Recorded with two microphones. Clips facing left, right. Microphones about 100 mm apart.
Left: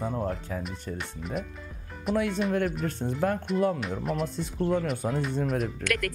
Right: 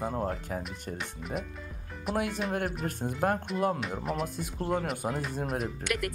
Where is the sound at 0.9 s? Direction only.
Centre (ahead or behind).